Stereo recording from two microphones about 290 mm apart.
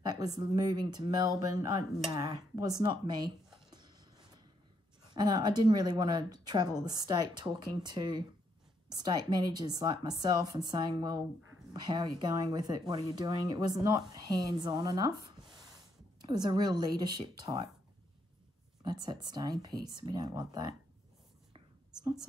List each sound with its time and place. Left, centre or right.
0.0 s speech: centre
3.7 s a sound: centre
5.1 s speech: centre
18.9 s speech: centre